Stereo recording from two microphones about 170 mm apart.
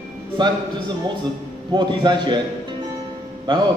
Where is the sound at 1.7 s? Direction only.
25° right (ahead or behind).